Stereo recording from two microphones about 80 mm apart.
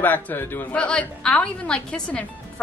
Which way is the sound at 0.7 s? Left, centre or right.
Centre.